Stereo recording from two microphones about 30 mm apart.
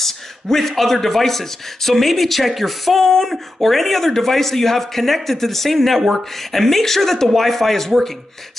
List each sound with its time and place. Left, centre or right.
0.0 s speech: centre